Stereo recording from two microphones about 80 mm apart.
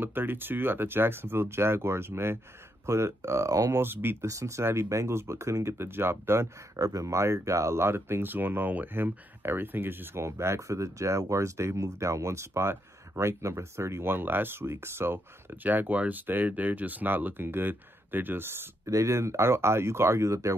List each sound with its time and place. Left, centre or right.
0.0 s speech: right
4.3 s speech: right
6.8 s speech: right